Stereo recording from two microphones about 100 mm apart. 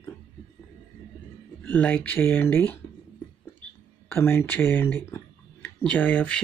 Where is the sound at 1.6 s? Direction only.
20° left (ahead or behind).